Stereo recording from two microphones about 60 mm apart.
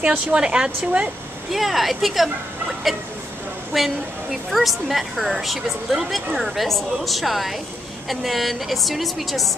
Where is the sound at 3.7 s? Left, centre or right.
Centre.